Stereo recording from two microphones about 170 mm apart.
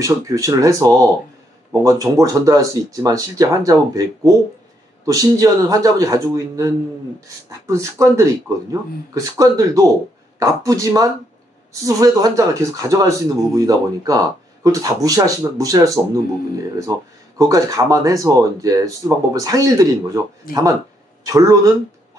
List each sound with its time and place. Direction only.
0.0 s speech: 20° right (ahead or behind)
17.4 s speech: 20° right (ahead or behind)
20.5 s speech: 60° left (ahead or behind)
21.3 s speech: 20° right (ahead or behind)